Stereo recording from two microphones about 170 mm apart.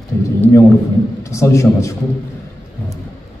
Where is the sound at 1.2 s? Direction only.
15° left (ahead or behind).